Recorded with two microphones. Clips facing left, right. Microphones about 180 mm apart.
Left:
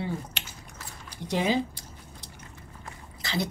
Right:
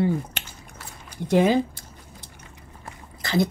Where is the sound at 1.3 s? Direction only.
50° right (ahead or behind).